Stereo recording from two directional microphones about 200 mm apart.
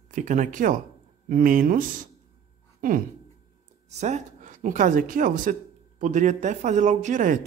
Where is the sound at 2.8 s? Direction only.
45° right (ahead or behind).